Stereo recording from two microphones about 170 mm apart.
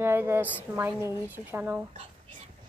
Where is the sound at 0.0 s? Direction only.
15° right (ahead or behind).